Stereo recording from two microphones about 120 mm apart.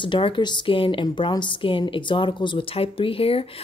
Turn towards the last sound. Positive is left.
turn(degrees=55)  # may be behind; listen again after turning